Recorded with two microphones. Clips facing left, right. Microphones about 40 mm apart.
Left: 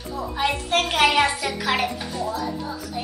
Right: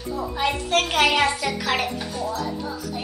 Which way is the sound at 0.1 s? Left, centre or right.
Centre.